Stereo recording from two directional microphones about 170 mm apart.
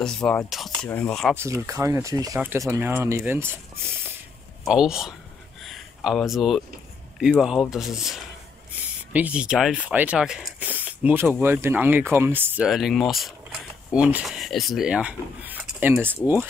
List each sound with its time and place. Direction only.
0.0 s speech: 5° left (ahead or behind)
1.3 s speech: 15° right (ahead or behind)
4.6 s speech: 5° right (ahead or behind)
5.6 s a sound: centre (ahead or behind)
7.2 s speech: 5° right (ahead or behind)